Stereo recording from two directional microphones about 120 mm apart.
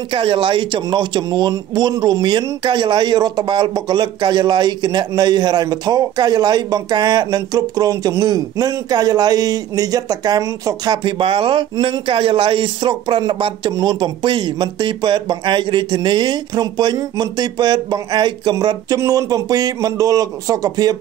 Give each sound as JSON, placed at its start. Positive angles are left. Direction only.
{"t": 0.1, "sound": "speech", "side_deg": -45}
{"t": 11.1, "sound": "speech", "side_deg": -45}